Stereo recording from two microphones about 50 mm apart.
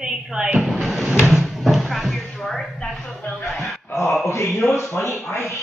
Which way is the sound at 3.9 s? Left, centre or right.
Left.